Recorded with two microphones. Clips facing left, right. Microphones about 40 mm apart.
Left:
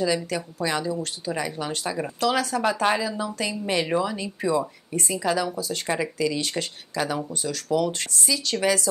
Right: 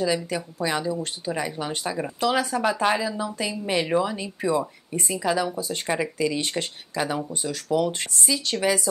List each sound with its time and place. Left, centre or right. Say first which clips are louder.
0.0 s speech: even; centre
2.6 s speech: even; centre